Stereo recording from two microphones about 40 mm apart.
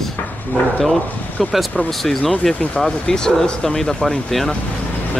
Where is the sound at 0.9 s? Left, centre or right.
Left.